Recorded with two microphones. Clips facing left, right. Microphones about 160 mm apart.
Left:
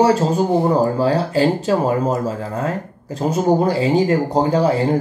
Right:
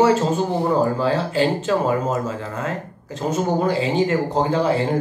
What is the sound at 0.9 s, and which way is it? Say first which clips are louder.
Speech: left 3 dB; 40° left (ahead or behind).